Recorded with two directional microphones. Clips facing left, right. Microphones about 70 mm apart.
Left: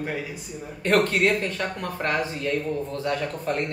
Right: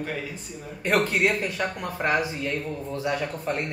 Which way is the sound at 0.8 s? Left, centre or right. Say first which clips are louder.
Left 2 dB; centre.